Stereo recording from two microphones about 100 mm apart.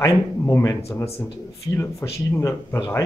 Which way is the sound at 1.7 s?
25° left (ahead or behind).